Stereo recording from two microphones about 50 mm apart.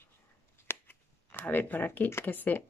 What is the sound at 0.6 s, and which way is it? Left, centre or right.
Shuffling cards, left.